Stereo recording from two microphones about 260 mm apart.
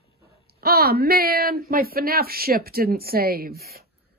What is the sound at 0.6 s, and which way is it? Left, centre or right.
Speech, right.